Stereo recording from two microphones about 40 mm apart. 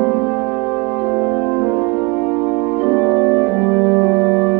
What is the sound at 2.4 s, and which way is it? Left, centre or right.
Organ, centre.